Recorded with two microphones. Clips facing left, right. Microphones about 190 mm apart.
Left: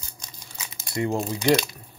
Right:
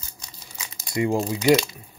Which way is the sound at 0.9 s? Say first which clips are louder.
Right 3 dB; 15° right (ahead or behind).